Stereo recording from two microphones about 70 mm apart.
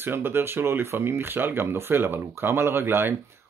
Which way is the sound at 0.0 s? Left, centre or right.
Right.